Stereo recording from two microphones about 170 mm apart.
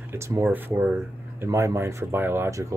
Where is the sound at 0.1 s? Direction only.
15° right (ahead or behind).